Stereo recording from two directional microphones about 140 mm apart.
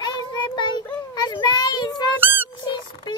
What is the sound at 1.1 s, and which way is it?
Speech, 30° left (ahead or behind).